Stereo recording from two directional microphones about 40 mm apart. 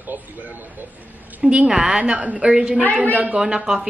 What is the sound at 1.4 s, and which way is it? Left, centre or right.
Speech, centre.